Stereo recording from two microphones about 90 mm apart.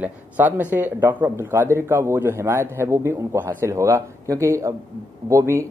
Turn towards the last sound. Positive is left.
turn(degrees=-35)  # may be behind; listen again after turning